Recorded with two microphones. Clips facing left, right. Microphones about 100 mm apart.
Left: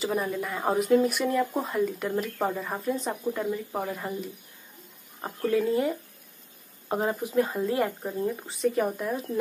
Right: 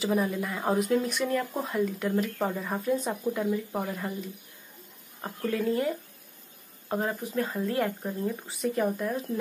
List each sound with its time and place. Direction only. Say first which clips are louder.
0.0 s speech: right 1 dB; centre (ahead or behind)
6.9 s speech: left 2 dB; 15° left (ahead or behind)